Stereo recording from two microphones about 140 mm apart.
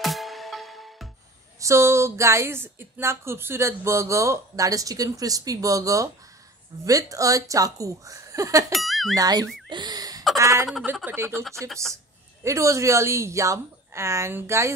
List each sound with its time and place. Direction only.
0.0 s music: centre (ahead or behind)
1.6 s speech: 20° right (ahead or behind)
8.7 s speech: centre (ahead or behind)
9.1 s speech: 25° right (ahead or behind)
9.7 s a sound: 30° right (ahead or behind)
10.3 s speech: 25° right (ahead or behind)
12.4 s speech: 20° right (ahead or behind)